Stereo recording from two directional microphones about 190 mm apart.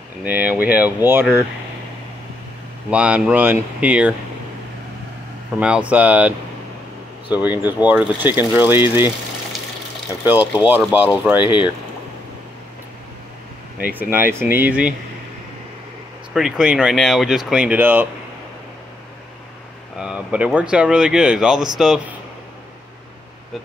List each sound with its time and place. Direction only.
0.2 s speech: 10° right (ahead or behind)
2.9 s speech: 5° right (ahead or behind)
5.6 s speech: 5° right (ahead or behind)
10.5 s speech: 5° right (ahead or behind)
11.4 s speech: 25° left (ahead or behind)
13.9 s speech: 10° right (ahead or behind)
16.3 s speech: 5° right (ahead or behind)
20.0 s speech: 5° right (ahead or behind)